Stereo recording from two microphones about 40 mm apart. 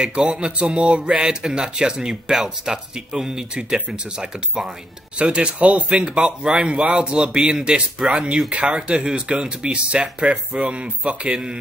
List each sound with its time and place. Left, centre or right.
0.0 s speech: centre
6.0 s speech: right